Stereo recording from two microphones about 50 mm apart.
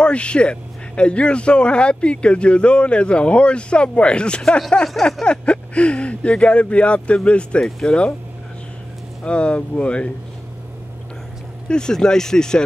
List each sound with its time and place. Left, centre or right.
0.0 s a man's voice: left
9.2 s a man's voice: left
11.7 s speech: centre